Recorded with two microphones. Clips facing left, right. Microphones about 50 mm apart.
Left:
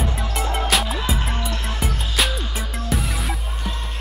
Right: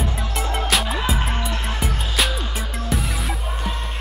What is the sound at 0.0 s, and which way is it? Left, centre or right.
Music, centre.